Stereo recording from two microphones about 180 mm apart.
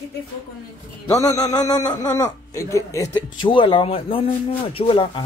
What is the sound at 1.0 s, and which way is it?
Speech, 20° left (ahead or behind).